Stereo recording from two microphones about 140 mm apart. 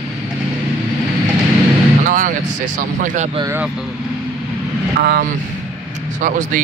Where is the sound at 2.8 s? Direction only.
70° right (ahead or behind).